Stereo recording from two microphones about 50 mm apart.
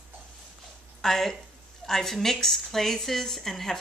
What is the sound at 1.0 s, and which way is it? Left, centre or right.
A woman's voice, centre.